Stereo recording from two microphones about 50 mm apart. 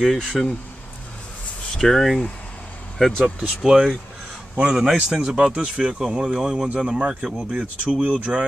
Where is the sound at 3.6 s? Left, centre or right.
Centre.